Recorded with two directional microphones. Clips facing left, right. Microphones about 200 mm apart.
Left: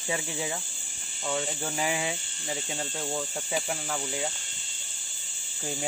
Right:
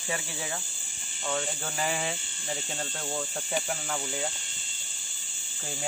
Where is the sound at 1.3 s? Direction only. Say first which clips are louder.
Left 1 dB; 10° left (ahead or behind).